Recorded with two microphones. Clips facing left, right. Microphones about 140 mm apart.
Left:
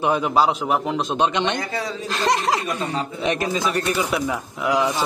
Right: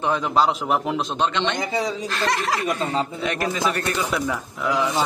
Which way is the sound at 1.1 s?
15° left (ahead or behind).